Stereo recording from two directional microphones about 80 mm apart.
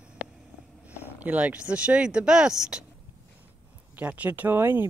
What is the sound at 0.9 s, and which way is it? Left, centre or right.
Speech, centre.